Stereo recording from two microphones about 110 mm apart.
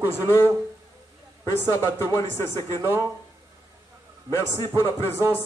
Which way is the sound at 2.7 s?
25° right (ahead or behind).